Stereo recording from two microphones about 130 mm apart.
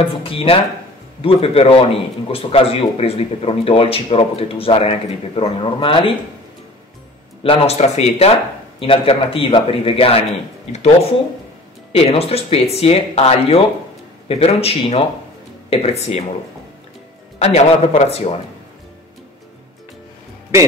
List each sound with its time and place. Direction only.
0.0 s a man's voice: 45° left (ahead or behind)
7.4 s a man's voice: 55° left (ahead or behind)
8.7 s a man's voice: 45° left (ahead or behind)
11.9 s a man's voice: 50° left (ahead or behind)
17.4 s a man's voice: 55° left (ahead or behind)